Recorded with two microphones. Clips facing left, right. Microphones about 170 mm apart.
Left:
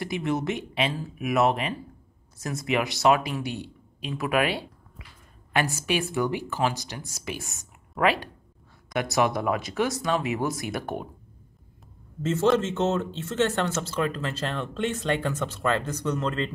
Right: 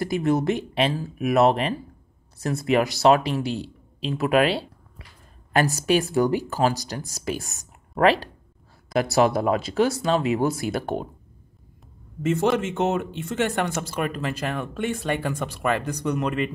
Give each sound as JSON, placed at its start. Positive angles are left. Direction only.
{"t": 0.0, "sound": "speech", "side_deg": -40}
{"t": 5.5, "sound": "speech", "side_deg": -40}
{"t": 12.2, "sound": "speech", "side_deg": -15}